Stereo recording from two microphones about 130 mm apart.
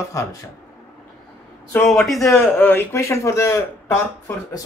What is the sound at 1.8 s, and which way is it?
Speech, centre (ahead or behind).